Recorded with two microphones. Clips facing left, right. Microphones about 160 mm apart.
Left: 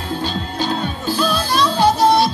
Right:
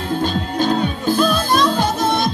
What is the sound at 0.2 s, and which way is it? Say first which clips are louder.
Music: right 4 dB; 50° right (ahead or behind).